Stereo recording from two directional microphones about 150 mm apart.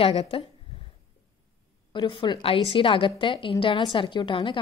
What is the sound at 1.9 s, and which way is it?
A woman's voice, 30° left (ahead or behind).